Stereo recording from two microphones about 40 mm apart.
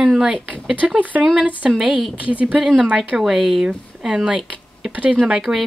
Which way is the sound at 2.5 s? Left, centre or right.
Centre.